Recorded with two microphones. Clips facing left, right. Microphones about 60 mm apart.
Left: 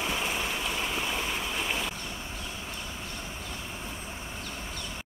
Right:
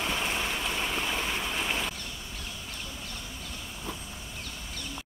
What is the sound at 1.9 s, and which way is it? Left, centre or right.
Vehicle, left.